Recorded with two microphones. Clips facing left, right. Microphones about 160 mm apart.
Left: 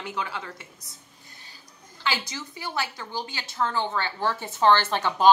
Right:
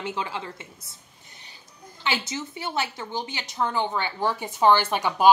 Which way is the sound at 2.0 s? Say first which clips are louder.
Right 2 dB; 20° right (ahead or behind).